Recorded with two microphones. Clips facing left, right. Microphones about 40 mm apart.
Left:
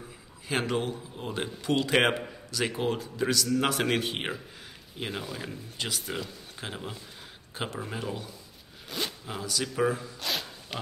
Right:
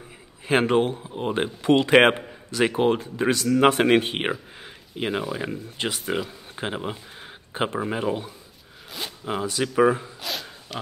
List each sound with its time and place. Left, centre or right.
0.5 s a man's voice: right
4.6 s a sound: right
5.4 s a man's voice: right
10.7 s pig: centre